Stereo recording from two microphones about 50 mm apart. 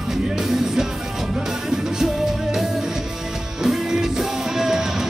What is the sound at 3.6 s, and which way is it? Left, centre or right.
Music, centre.